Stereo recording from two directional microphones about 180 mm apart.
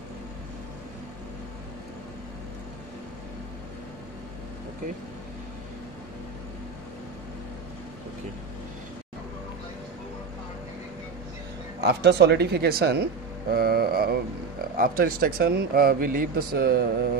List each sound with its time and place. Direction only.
11.8 s speech: 65° right (ahead or behind)